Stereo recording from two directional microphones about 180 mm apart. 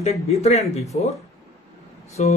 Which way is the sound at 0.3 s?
35° left (ahead or behind).